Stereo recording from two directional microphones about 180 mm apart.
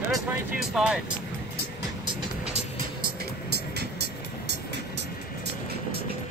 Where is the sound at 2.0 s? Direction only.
35° right (ahead or behind).